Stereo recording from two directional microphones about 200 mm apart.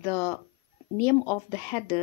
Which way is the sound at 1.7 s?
20° left (ahead or behind).